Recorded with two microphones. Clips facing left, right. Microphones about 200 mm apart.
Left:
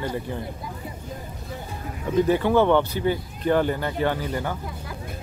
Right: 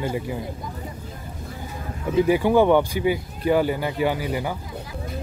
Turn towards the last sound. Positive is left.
turn(degrees=-10)  # may be behind; listen again after turning